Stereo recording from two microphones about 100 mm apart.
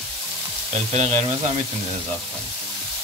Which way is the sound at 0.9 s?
90° right.